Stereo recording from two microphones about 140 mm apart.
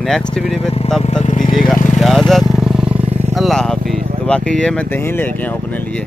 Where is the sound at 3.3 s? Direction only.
Centre (ahead or behind).